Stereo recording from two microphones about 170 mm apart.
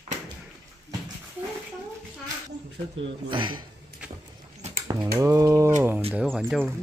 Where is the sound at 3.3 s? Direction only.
30° right (ahead or behind).